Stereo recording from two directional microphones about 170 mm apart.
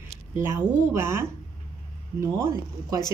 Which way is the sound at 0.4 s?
15° right (ahead or behind).